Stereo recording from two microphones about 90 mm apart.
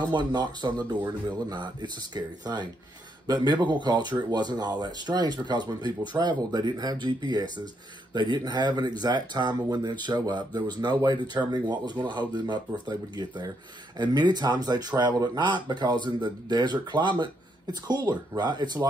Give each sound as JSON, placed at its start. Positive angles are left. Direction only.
{"t": 0.0, "sound": "speech", "side_deg": -50}